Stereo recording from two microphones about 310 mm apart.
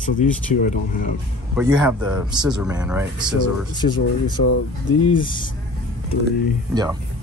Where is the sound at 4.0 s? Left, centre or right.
Left.